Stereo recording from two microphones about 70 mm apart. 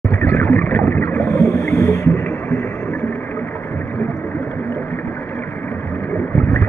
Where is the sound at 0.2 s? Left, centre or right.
Left.